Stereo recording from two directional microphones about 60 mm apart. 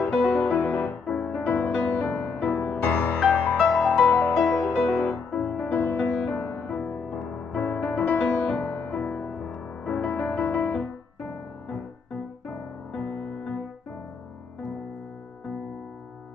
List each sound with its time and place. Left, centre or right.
0.0 s music: centre
0.5 s music: left
2.6 s music: left
3.5 s music: centre
4.0 s music: centre
5.1 s music: left
7.2 s music: left
7.6 s music: left
9.3 s music: left
12.4 s music: left